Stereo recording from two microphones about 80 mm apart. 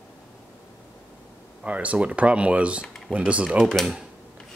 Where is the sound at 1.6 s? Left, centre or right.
Centre.